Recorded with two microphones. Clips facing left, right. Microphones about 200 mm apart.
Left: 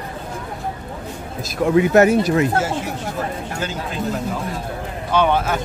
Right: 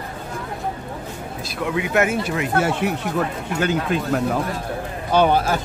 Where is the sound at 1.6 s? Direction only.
40° left (ahead or behind).